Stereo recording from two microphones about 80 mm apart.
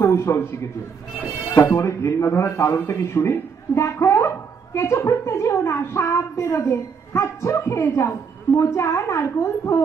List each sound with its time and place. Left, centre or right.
0.0 s a man's voice: left
1.6 s a man's voice: left